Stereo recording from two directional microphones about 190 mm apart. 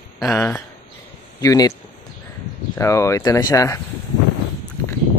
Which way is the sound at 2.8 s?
15° left (ahead or behind).